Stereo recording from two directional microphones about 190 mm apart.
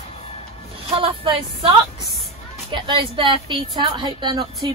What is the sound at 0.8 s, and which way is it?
Speech, 30° right (ahead or behind).